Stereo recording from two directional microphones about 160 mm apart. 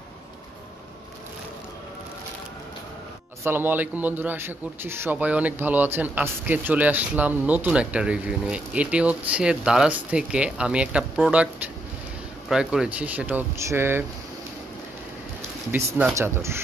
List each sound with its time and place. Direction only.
3.4 s a man's voice: 15° right (ahead or behind)
12.4 s a man's voice: 5° right (ahead or behind)
15.7 s a man's voice: 15° right (ahead or behind)